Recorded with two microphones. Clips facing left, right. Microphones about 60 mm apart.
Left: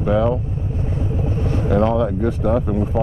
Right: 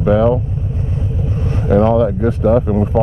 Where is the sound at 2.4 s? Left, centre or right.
Centre.